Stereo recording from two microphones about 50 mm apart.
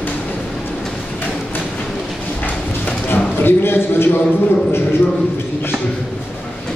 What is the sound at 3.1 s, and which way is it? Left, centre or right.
A man's voice, left.